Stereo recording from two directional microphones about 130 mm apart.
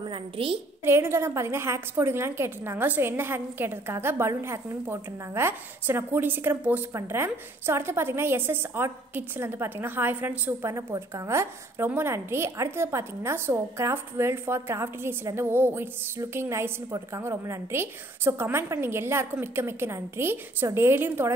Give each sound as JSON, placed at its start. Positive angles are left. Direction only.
{"t": 0.1, "sound": "a woman's voice", "side_deg": -45}
{"t": 0.8, "sound": "a woman's voice", "side_deg": -20}